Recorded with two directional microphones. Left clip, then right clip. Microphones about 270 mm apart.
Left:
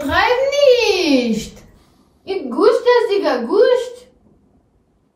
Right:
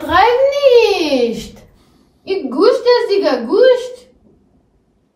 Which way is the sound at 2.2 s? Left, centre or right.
Centre.